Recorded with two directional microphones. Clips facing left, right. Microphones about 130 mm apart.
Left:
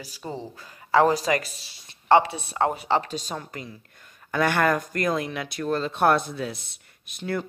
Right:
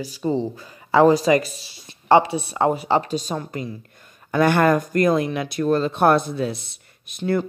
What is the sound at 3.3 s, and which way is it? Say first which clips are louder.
Speech: right 7 dB; 25° right (ahead or behind).